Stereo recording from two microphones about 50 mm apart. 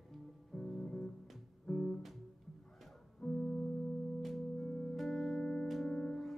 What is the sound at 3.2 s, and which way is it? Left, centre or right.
Music, left.